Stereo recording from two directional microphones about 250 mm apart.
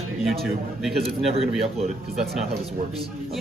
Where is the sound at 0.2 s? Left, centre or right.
Centre.